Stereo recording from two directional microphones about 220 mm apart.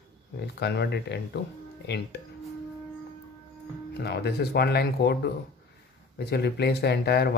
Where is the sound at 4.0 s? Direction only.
45° left (ahead or behind).